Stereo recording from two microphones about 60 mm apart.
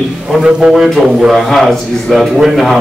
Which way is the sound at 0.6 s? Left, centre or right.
Centre.